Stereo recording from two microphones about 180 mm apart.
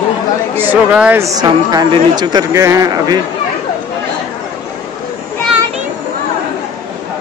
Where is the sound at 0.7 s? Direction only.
10° right (ahead or behind).